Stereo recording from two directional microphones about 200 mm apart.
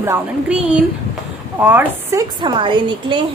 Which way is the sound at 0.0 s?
10° right (ahead or behind).